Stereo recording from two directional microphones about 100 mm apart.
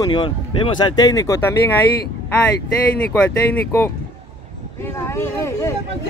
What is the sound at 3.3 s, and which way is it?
Speech, 25° left (ahead or behind).